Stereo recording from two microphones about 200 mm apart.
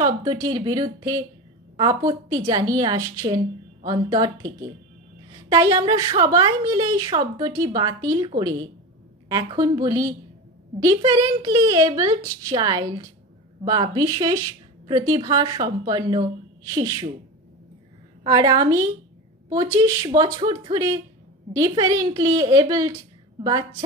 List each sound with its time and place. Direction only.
0.0 s a woman's voice: 20° right (ahead or behind)
5.5 s a woman's voice: 20° right (ahead or behind)
9.3 s a woman's voice: 20° right (ahead or behind)
18.2 s a woman's voice: 20° right (ahead or behind)